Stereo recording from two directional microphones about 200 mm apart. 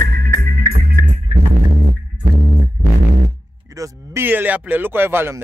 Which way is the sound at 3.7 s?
10° right (ahead or behind).